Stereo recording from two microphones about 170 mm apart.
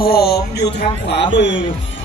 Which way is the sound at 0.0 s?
65° left (ahead or behind).